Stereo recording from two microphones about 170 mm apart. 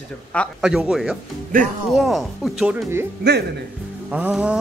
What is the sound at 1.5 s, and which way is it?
Speech, 55° right (ahead or behind).